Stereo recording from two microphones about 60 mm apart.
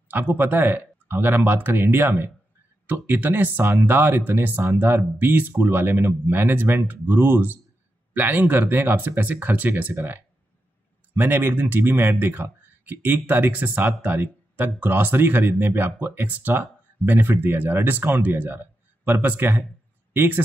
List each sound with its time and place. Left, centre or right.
0.1 s speech: right